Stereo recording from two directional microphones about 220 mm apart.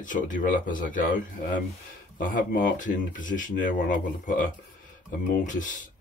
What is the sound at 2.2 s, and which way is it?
Speech, 35° left (ahead or behind).